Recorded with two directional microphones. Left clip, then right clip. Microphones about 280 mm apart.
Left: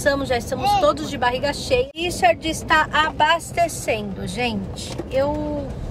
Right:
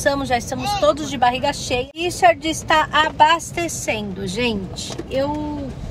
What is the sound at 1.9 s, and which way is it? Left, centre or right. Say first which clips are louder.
Speech: right 3 dB; centre.